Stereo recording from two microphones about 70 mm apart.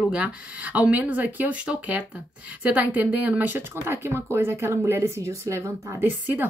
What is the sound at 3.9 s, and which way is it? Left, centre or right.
Speech, right.